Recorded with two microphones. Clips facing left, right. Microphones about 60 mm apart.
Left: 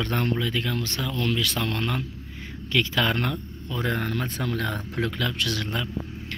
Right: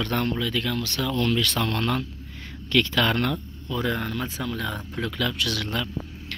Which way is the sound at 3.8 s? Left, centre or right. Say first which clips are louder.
Left 1 dB; left.